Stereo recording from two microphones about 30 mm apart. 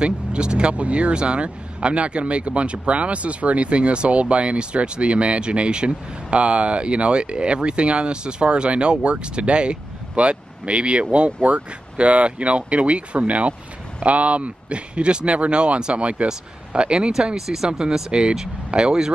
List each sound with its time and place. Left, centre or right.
0.0 s speech: right
18.9 s speech: right